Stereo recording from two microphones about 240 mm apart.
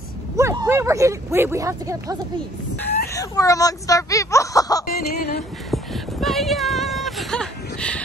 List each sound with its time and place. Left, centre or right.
0.4 s speech: centre
3.1 s speech: centre
4.8 s a sound: left
5.7 s speech: centre